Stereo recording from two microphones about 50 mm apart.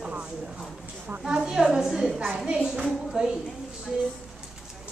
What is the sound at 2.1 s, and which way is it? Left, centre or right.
Speech, centre.